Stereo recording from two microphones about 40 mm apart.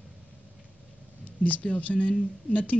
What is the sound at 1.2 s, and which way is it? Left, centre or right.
Speech, left.